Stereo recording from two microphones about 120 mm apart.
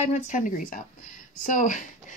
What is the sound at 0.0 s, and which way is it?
Speech, 85° left.